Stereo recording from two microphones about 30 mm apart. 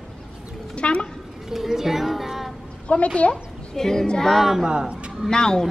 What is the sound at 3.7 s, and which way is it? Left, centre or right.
Speech, centre.